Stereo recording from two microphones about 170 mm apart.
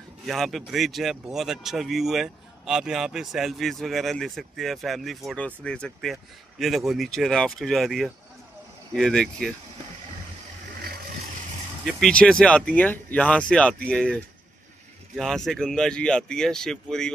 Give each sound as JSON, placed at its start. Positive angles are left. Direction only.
{"t": 0.3, "sound": "speech", "side_deg": 0}
{"t": 10.8, "sound": "vehicle", "side_deg": -60}
{"t": 11.8, "sound": "speech", "side_deg": 5}